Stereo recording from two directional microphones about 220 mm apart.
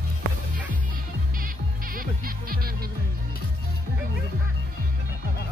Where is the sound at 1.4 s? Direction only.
40° right (ahead or behind).